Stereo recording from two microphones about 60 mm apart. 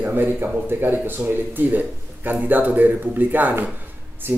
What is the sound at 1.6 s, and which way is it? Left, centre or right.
Speech, right.